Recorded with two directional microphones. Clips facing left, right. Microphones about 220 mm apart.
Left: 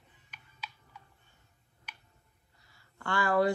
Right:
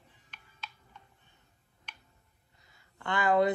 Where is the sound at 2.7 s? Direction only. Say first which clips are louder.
Even; 20° right (ahead or behind).